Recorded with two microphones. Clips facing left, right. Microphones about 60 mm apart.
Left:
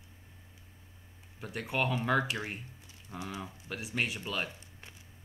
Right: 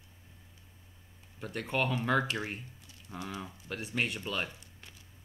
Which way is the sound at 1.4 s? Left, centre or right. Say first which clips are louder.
Even; centre.